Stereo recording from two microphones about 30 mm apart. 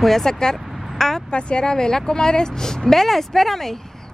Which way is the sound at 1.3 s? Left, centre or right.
Left.